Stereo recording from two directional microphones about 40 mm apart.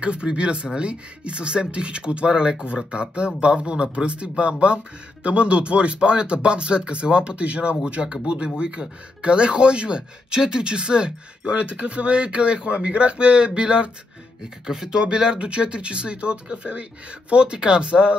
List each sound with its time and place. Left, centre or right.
0.0 s speech: right